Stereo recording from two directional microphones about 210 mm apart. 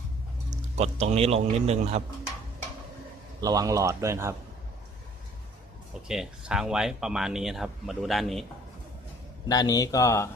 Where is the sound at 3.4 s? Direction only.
15° right (ahead or behind).